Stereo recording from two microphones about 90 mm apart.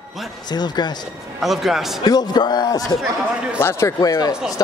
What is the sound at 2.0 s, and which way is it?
Speech, 50° left (ahead or behind).